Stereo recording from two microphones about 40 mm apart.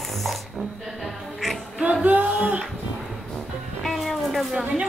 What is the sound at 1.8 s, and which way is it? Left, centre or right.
Music, right.